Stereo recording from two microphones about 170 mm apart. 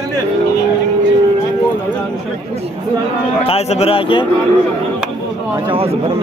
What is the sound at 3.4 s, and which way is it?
Speech, 40° left (ahead or behind).